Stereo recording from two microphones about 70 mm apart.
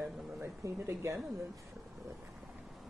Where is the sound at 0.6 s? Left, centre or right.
Right.